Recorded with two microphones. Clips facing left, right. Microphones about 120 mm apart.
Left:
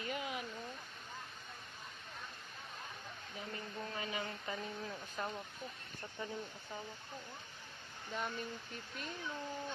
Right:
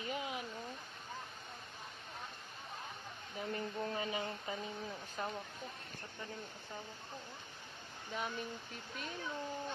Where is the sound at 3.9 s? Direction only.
30° right (ahead or behind).